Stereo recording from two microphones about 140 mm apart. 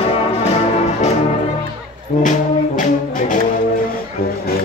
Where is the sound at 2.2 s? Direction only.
65° left (ahead or behind).